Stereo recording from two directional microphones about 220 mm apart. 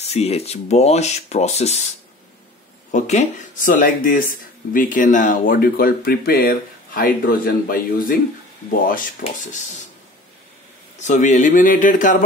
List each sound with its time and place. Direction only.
0.1 s speech: 30° left (ahead or behind)
2.9 s speech: 35° left (ahead or behind)
11.0 s speech: 35° left (ahead or behind)